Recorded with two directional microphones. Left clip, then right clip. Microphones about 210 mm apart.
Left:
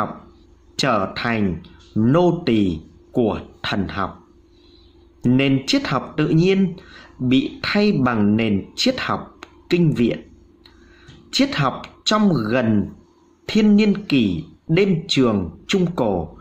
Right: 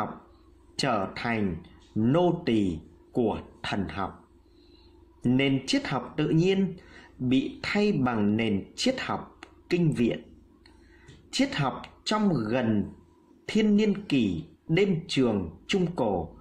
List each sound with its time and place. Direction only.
0.7 s a man's voice: 10° left (ahead or behind)
5.2 s speech: 10° left (ahead or behind)
11.2 s speech: 10° left (ahead or behind)